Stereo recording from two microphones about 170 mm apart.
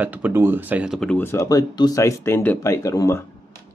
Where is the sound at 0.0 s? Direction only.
10° right (ahead or behind).